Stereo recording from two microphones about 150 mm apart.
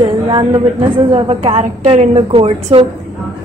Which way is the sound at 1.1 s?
40° right (ahead or behind).